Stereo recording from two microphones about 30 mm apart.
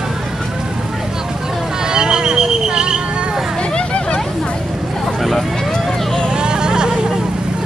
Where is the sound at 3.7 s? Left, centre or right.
Left.